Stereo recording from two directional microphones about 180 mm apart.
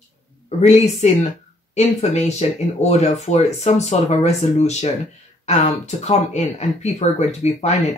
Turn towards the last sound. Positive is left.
turn(degrees=40)  # may be behind; listen again after turning